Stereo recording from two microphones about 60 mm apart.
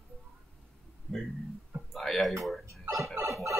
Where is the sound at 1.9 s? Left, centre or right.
Centre.